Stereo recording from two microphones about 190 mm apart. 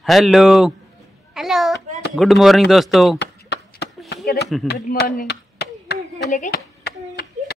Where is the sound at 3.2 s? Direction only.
60° left (ahead or behind).